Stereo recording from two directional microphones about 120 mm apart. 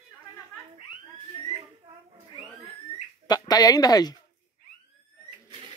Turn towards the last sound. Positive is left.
turn(degrees=30)  # may be behind; listen again after turning